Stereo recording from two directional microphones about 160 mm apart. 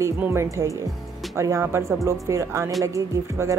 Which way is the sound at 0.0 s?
15° right (ahead or behind).